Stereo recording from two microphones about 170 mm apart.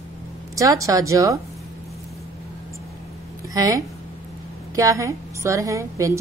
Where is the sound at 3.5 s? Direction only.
20° right (ahead or behind).